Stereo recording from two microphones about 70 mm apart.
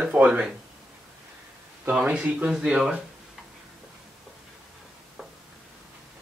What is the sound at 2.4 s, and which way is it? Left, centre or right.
Speech, centre.